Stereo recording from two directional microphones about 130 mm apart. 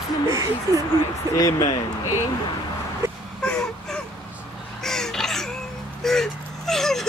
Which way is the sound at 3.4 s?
5° left (ahead or behind).